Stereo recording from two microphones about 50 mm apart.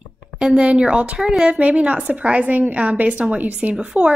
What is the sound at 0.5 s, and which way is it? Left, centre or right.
Speech, right.